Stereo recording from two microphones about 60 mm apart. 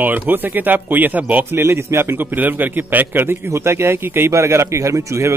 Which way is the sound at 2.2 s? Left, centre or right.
Right.